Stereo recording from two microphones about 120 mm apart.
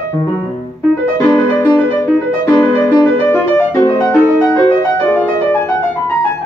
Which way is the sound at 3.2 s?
10° left (ahead or behind).